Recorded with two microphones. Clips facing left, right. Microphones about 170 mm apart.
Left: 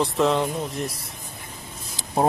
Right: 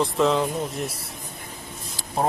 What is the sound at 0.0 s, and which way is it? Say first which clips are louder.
Speech: even; centre (ahead or behind).